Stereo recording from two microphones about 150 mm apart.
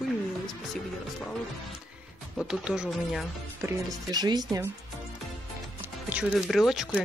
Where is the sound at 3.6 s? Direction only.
25° right (ahead or behind).